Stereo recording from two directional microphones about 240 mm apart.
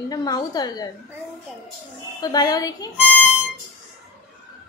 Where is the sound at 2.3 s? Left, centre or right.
Centre.